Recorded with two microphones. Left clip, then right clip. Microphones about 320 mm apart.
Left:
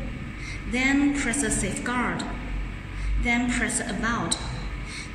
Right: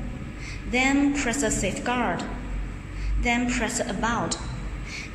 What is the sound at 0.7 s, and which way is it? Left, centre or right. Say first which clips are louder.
A woman's voice: right 1 dB; centre.